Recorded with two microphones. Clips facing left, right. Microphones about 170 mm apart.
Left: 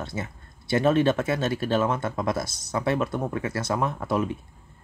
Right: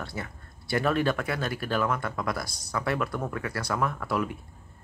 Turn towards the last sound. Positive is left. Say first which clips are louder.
# left 3 dB
turn(degrees=20)  # may be behind; listen again after turning